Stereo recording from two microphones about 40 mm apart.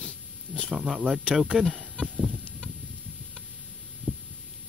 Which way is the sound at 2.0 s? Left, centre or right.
Centre.